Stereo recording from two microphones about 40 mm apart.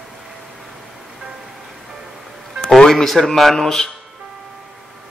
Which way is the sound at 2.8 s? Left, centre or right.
Centre.